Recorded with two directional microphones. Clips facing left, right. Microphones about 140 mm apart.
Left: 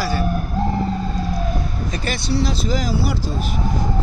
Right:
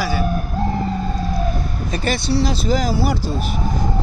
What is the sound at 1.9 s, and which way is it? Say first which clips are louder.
Speech: right 4 dB; 30° right (ahead or behind).